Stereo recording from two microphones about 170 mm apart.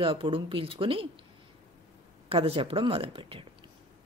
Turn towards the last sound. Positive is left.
turn(degrees=-35)  # may be behind; listen again after turning